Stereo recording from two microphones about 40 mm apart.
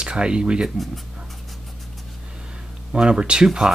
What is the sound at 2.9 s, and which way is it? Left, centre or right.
Speech, right.